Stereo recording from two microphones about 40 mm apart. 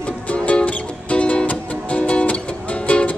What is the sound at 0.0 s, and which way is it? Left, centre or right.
Music, left.